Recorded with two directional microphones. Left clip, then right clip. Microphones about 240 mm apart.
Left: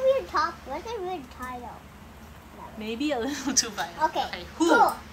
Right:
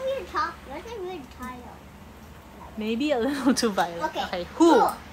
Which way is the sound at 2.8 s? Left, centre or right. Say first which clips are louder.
Right 4 dB; centre.